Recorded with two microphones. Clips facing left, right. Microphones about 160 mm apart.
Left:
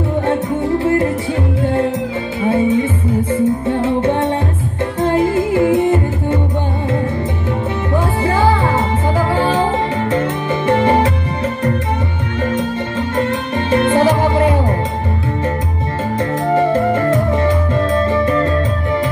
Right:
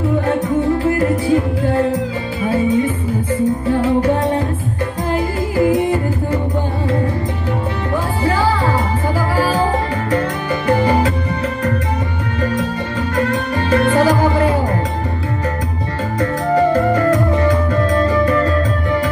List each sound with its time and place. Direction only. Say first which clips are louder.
2.4 s music: left 1 dB; 25° left (ahead or behind)
8.2 s music: left 1 dB; 20° left (ahead or behind)
13.1 s music: right 1 dB; 25° left (ahead or behind)
16.2 s music: even; 25° left (ahead or behind)